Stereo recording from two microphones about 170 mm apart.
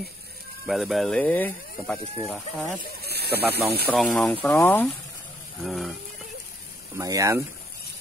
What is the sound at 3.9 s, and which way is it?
Speech, centre (ahead or behind).